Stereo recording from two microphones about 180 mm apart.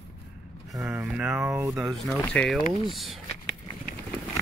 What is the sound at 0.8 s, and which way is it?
Speech, 5° right (ahead or behind).